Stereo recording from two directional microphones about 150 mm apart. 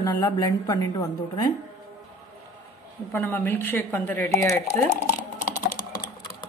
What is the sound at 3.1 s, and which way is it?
Speech, 15° left (ahead or behind).